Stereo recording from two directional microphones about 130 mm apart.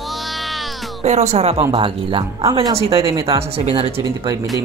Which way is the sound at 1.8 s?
40° right (ahead or behind).